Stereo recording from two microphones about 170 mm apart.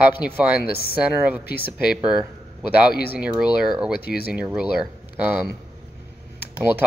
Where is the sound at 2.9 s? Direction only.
65° left (ahead or behind).